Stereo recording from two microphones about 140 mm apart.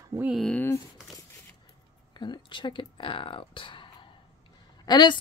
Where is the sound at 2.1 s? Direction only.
30° left (ahead or behind).